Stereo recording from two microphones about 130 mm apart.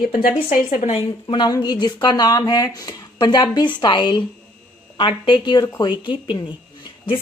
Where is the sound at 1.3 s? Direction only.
35° left (ahead or behind).